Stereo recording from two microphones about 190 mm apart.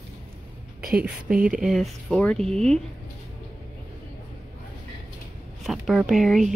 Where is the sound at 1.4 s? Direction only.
5° right (ahead or behind).